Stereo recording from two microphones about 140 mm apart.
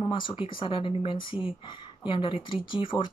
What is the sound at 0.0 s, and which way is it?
Speech, 35° left (ahead or behind).